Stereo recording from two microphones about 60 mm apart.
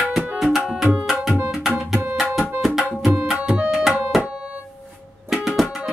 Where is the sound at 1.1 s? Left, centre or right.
Centre.